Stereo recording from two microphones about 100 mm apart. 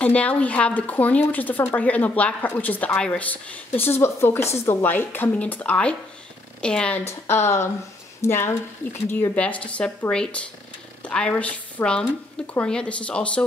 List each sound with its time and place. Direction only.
0.0 s a woman's voice: 15° left (ahead or behind)
7.1 s speech: 25° left (ahead or behind)
9.3 s a woman's voice: 15° left (ahead or behind)